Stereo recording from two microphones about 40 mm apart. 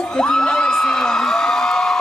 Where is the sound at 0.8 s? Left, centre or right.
Centre.